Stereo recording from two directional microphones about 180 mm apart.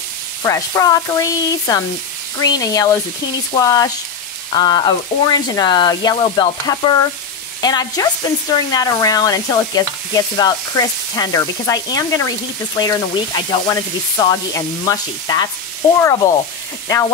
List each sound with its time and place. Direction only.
0.4 s stir: 20° left (ahead or behind)
16.0 s sizzle: 15° left (ahead or behind)